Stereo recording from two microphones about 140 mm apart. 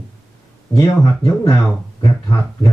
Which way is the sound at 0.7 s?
25° left (ahead or behind).